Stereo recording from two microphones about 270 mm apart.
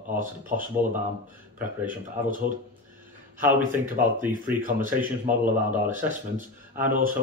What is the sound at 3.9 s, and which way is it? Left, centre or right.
Speech, right.